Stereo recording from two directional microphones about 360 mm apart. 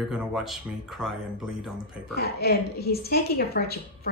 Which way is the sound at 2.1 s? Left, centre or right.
Left.